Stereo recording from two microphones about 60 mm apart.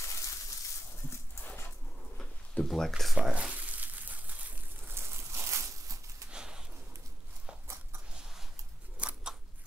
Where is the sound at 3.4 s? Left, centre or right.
Right.